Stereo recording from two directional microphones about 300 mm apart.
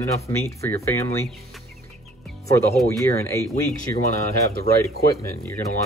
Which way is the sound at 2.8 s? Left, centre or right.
Centre.